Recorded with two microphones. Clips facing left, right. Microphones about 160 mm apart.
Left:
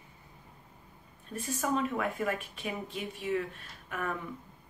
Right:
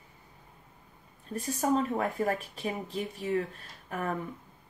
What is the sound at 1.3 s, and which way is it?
Speech, 35° right (ahead or behind).